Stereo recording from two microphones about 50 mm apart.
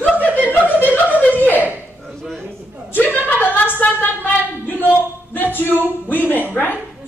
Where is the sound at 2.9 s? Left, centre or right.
Left.